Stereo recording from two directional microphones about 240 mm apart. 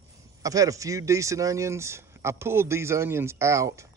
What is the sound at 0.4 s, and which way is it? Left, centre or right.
A man's voice, centre.